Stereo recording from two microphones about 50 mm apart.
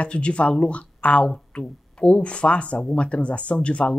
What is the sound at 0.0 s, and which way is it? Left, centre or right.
Speech, left.